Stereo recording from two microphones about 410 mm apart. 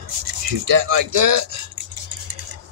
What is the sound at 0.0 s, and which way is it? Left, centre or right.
Speech, right.